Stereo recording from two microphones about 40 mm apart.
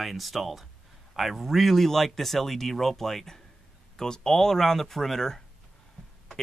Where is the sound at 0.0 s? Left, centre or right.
Centre.